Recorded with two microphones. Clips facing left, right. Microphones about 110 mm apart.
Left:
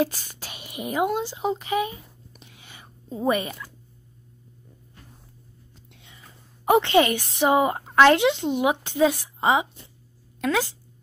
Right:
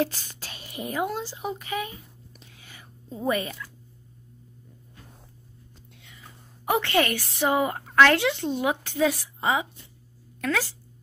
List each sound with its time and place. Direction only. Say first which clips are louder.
0.0 s speech: left 2 dB; 15° left (ahead or behind)
6.0 s a woman's voice: right 2 dB; 25° left (ahead or behind)